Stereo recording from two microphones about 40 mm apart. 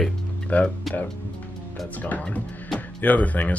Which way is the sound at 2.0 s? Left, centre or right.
Left.